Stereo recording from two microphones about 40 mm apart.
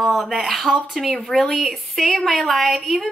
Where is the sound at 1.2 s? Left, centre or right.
Centre.